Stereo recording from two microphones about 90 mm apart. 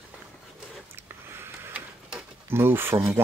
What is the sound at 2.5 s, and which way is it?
Speech, 25° right (ahead or behind).